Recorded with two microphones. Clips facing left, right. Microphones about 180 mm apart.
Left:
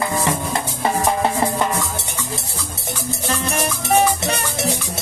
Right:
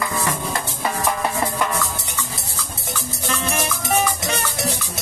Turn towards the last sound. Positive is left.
turn(degrees=30)  # may be behind; listen again after turning